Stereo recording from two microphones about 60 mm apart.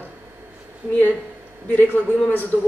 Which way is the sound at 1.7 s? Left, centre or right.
Left.